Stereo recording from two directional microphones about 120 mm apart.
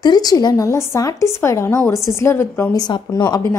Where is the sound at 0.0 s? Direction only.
35° left (ahead or behind).